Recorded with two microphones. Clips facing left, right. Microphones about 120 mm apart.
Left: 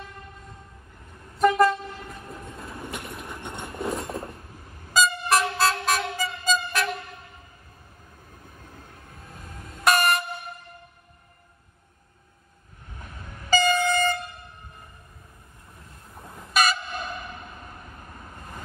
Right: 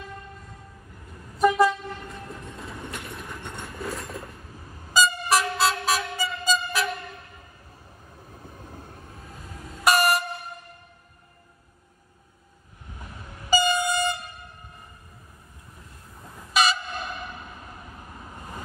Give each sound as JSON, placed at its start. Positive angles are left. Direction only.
{"t": 1.4, "sound": "vehicle", "side_deg": 0}
{"t": 3.2, "sound": "a sound", "side_deg": 20}
{"t": 4.9, "sound": "vehicle", "side_deg": 0}
{"t": 8.5, "sound": "train", "side_deg": -25}
{"t": 9.2, "sound": "train", "side_deg": 0}
{"t": 13.0, "sound": "train", "side_deg": -5}
{"t": 16.3, "sound": "train", "side_deg": 0}